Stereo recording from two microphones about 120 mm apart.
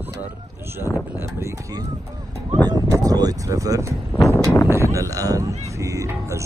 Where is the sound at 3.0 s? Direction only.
30° right (ahead or behind).